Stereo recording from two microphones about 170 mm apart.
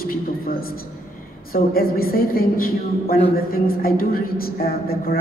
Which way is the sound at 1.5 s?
60° left (ahead or behind).